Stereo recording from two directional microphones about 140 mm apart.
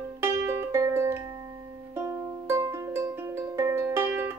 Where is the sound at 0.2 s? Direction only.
20° right (ahead or behind).